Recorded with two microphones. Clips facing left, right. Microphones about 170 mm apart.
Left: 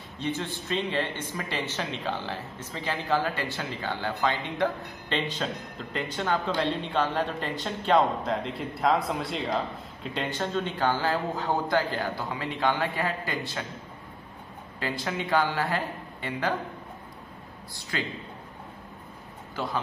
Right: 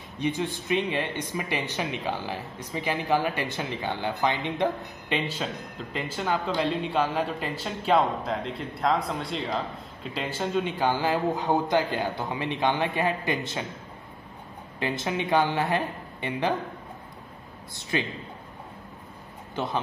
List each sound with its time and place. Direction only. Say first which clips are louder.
0.2 s speech: right 3 dB; 15° right (ahead or behind)
5.4 s a man's voice: even; 5° right (ahead or behind)
14.8 s a man's voice: right 3 dB; 20° right (ahead or behind)
17.9 s a man's voice: right 4 dB; 20° right (ahead or behind)
19.5 s speech: right 2 dB; 25° right (ahead or behind)